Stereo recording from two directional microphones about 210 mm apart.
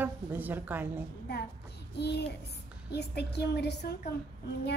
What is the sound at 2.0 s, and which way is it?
A woman's voice, 55° left (ahead or behind).